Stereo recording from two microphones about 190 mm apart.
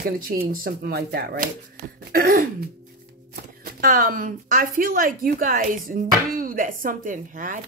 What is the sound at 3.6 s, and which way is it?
Speech, 50° right (ahead or behind).